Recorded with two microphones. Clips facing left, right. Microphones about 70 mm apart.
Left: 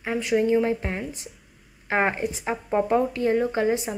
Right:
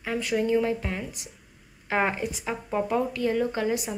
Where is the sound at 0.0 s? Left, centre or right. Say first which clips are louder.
Left 4 dB; left.